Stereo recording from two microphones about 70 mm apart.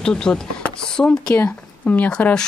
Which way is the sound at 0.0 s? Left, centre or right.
Centre.